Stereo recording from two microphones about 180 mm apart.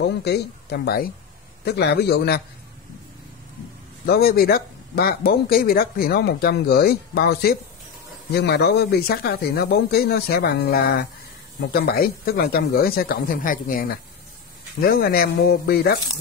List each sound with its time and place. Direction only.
0.0 s speech: 65° left (ahead or behind)
4.0 s speech: 60° left (ahead or behind)